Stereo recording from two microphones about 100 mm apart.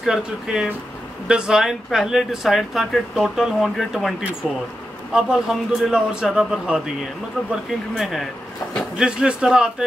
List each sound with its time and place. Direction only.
0.0 s a man's voice: 5° right (ahead or behind)
5.1 s a man's voice: 5° right (ahead or behind)
7.9 s a man's voice: centre (ahead or behind)